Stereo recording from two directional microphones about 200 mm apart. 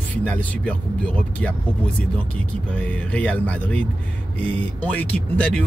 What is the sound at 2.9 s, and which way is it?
Speech, 5° left (ahead or behind).